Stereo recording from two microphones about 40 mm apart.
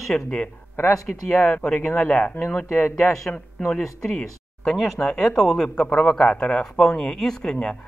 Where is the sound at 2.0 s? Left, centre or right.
Left.